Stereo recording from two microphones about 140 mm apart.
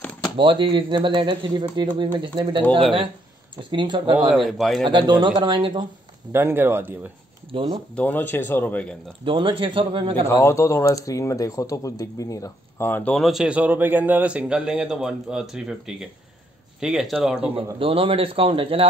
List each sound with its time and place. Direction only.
0.4 s speech: 35° right (ahead or behind)
3.7 s speech: 35° right (ahead or behind)
4.3 s speech: centre (ahead or behind)
4.8 s speech: 35° right (ahead or behind)
6.3 s speech: 15° right (ahead or behind)
7.5 s speech: 40° right (ahead or behind)
7.9 s speech: 10° left (ahead or behind)
9.2 s speech: 40° right (ahead or behind)
10.2 s speech: 20° left (ahead or behind); by 17.5 s centre (ahead or behind)
17.7 s speech: 40° right (ahead or behind)